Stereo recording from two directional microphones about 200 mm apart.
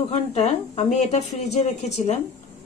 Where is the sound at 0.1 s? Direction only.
30° left (ahead or behind).